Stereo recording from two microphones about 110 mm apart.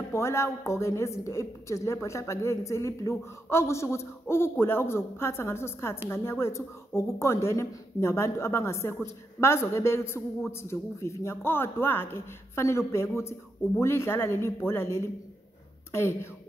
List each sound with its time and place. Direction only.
0.1 s a woman's voice: 25° left (ahead or behind)